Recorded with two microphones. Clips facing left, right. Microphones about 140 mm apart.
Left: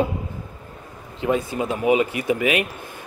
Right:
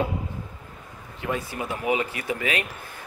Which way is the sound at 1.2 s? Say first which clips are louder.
Left 7 dB; 20° left (ahead or behind).